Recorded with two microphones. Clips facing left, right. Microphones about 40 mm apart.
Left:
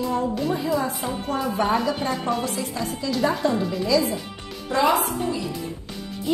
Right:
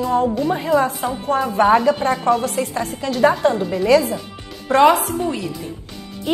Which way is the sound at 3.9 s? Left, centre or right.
Right.